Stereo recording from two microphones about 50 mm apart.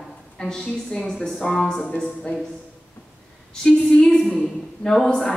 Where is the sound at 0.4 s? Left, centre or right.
Centre.